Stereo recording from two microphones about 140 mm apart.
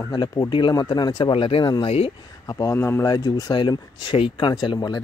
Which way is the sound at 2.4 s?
25° left (ahead or behind).